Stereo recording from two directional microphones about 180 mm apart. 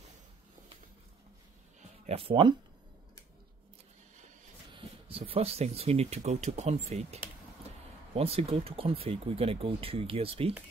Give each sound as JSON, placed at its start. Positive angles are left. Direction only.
{"t": 2.0, "sound": "speech", "side_deg": -30}
{"t": 4.7, "sound": "speech", "side_deg": -30}